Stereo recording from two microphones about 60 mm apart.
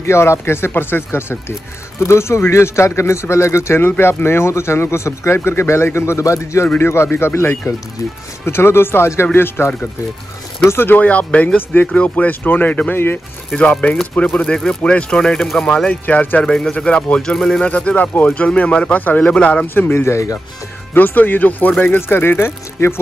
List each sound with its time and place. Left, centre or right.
0.0 s speech: left
3.8 s speech: left
6.8 s speech: left
11.0 s speech: left
12.9 s speech: left
13.6 s speech: left
15.3 s speech: centre
15.6 s speech: centre
16.4 s speech: centre
17.6 s speech: left
18.9 s speech: left
19.2 s speech: centre
19.7 s speech: left